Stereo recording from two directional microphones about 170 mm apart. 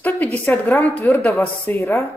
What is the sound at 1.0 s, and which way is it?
Speech, 15° left (ahead or behind).